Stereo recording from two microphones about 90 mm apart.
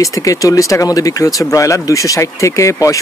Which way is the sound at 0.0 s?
35° left (ahead or behind).